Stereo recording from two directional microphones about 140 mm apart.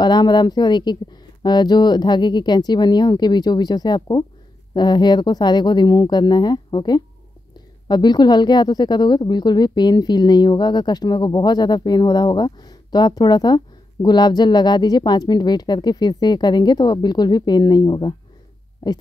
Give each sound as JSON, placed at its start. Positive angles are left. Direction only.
{"t": 0.0, "sound": "speech", "side_deg": 30}